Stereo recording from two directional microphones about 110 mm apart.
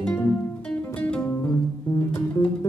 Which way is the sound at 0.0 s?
15° left (ahead or behind).